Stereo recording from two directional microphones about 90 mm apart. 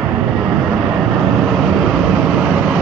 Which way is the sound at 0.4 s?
5° right (ahead or behind).